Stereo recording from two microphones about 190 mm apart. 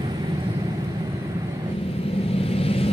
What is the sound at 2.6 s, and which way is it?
Vehicle, 30° left (ahead or behind).